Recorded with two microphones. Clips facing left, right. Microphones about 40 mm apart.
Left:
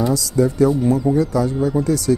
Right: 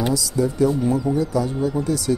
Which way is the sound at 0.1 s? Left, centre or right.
Left.